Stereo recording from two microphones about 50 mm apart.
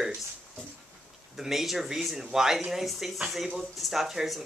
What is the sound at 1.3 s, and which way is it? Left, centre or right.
Speech, centre.